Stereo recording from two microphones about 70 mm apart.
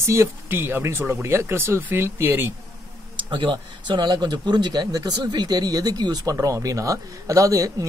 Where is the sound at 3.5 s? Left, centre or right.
Right.